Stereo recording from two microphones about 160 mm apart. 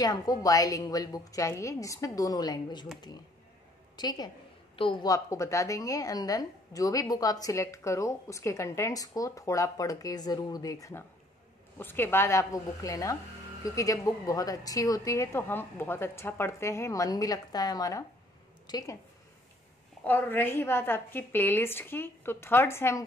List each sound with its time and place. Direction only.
0.0 s a woman's voice: 25° left (ahead or behind)
3.9 s a woman's voice: 25° left (ahead or behind)
20.1 s a woman's voice: 10° left (ahead or behind)